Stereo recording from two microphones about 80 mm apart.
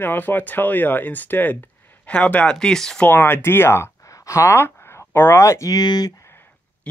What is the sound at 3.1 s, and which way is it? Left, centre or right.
Speech, left.